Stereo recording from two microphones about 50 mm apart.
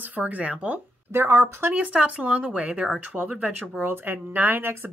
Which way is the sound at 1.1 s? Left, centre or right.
Right.